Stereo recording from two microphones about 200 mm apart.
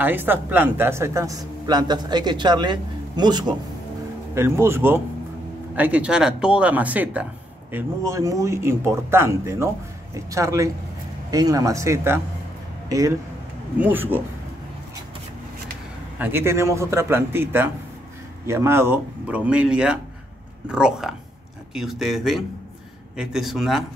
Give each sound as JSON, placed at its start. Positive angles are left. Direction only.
{"t": 0.0, "sound": "a man's voice", "side_deg": -10}
{"t": 13.7, "sound": "speech", "side_deg": -10}
{"t": 16.2, "sound": "speech", "side_deg": -10}